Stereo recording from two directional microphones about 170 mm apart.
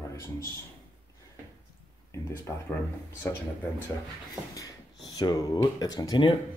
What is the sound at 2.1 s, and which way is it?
Speech, 15° left (ahead or behind).